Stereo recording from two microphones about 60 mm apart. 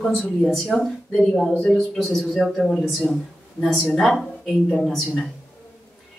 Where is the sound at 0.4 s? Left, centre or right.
Centre.